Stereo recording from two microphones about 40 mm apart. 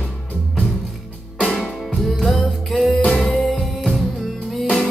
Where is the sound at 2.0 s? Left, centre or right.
Centre.